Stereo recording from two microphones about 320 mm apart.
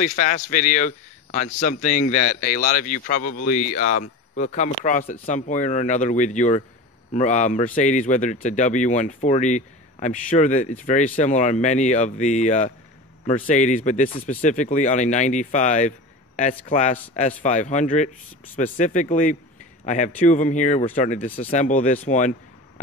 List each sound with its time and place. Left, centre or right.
0.0 s a man's voice: left